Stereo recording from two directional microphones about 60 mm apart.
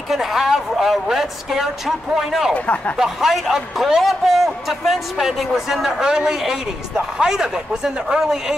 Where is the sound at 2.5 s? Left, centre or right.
Left.